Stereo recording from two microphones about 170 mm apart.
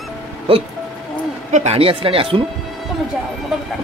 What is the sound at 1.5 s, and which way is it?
Speech, 40° right (ahead or behind).